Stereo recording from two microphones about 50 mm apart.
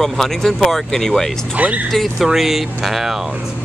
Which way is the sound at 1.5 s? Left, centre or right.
Right.